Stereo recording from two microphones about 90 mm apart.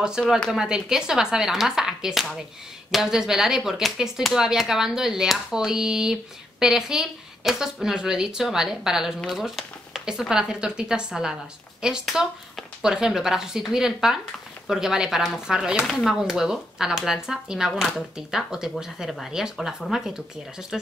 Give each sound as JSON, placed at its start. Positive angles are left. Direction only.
{"t": 0.5, "sound": "speech", "side_deg": -5}